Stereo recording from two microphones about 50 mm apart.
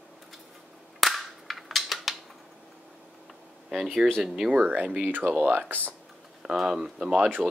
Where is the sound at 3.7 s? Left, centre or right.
Centre.